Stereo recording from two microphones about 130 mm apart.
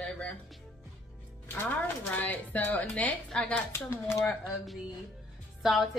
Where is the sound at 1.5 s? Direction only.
20° left (ahead or behind).